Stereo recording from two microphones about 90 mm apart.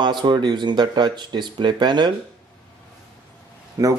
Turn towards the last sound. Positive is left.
turn(degrees=-40)  # may be behind; listen again after turning